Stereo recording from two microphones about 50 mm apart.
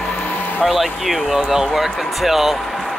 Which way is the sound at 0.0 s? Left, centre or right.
Left.